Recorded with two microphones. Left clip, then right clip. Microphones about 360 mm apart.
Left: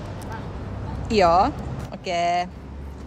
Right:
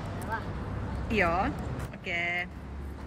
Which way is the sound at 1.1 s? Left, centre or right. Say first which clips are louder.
Left 10 dB; centre.